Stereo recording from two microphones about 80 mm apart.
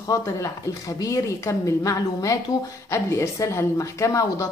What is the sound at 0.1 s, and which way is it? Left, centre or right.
A woman's voice, left.